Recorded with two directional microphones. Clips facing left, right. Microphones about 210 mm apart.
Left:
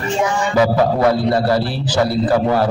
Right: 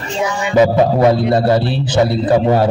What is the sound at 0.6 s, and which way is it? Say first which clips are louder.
A man's voice: right 4 dB; 20° right (ahead or behind).